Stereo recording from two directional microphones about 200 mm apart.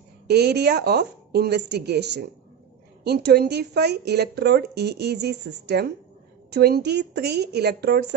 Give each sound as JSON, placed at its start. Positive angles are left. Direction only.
{"t": 0.3, "sound": "speech", "side_deg": -55}